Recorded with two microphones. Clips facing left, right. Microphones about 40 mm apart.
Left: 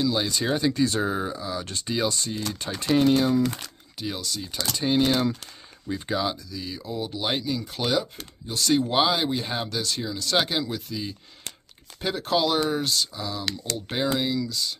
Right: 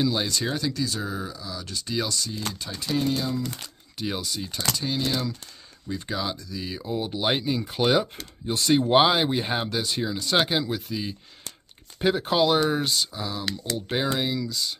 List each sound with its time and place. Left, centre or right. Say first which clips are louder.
0.3 s speech: left 3 dB; centre
0.8 s speech: left 5 dB; left
3.0 s speech: left 7 dB; left
4.0 s speech: right 1 dB; centre
4.7 s speech: left 8 dB; left
5.9 s speech: left 3 dB; centre
6.5 s speech: right 2 dB; centre